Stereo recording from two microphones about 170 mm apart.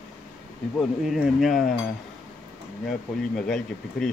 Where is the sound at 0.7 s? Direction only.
Centre (ahead or behind).